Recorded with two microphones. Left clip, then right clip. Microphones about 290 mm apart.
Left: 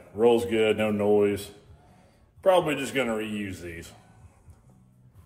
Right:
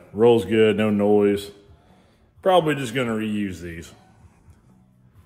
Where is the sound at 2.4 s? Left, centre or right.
Right.